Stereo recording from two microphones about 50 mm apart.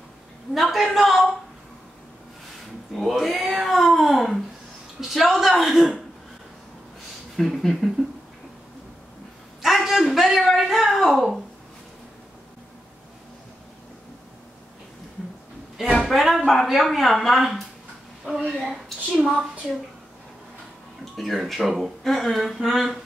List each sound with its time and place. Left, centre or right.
0.6 s speech: centre
2.9 s cat: centre
5.0 s speech: centre
7.3 s speech: centre
9.6 s a sound: centre
16.0 s speech: centre
21.0 s speech: centre